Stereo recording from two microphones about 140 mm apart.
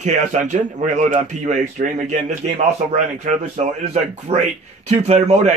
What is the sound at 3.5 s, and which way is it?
Speech, 50° right (ahead or behind).